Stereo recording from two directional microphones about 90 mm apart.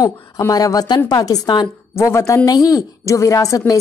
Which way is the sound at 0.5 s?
45° left (ahead or behind).